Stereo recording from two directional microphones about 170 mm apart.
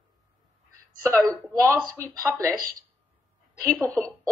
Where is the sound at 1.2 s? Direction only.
20° right (ahead or behind).